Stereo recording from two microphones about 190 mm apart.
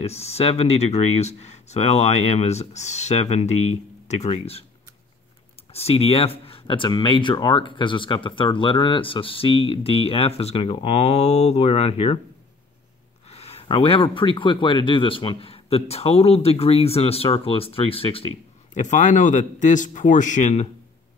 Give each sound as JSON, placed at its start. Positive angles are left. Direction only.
{"t": 0.0, "sound": "speech", "side_deg": 35}
{"t": 5.7, "sound": "speech", "side_deg": 30}
{"t": 13.3, "sound": "speech", "side_deg": 35}
{"t": 18.8, "sound": "speech", "side_deg": 40}